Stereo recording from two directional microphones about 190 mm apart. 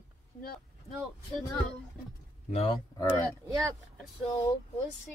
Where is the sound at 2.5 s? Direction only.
30° left (ahead or behind).